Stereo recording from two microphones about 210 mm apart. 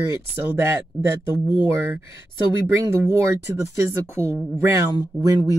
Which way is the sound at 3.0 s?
15° right (ahead or behind).